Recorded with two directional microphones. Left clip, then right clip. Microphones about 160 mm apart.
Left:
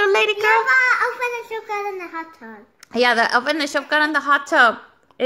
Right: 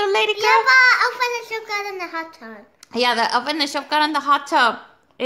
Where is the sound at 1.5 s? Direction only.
20° right (ahead or behind).